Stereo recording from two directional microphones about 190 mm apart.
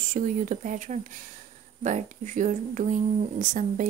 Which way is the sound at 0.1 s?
40° right (ahead or behind).